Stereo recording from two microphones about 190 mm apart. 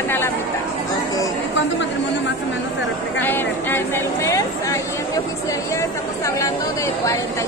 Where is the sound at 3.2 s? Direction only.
10° left (ahead or behind).